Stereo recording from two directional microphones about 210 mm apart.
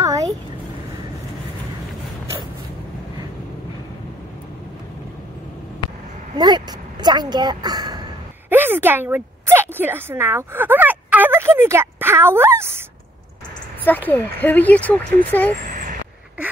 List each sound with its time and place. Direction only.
0.0 s a sound: 15° right (ahead or behind)
6.3 s a woman's voice: 20° right (ahead or behind)
13.8 s speech: 10° left (ahead or behind)
15.7 s vehicle: 40° right (ahead or behind)